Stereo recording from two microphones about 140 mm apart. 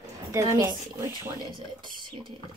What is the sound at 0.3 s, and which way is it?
Speech, 20° right (ahead or behind).